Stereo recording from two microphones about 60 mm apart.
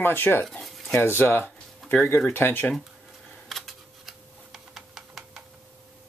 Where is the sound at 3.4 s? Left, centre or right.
Centre.